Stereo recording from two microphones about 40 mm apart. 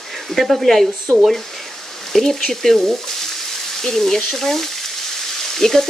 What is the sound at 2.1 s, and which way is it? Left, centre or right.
Speech, centre.